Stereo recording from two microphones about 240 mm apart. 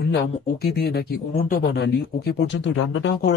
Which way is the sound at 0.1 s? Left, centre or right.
Left.